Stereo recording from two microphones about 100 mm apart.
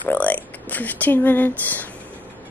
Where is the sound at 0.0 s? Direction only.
15° left (ahead or behind).